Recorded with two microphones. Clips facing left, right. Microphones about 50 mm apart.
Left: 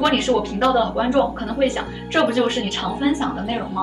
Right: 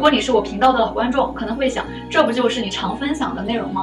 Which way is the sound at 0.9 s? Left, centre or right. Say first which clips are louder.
Even; right.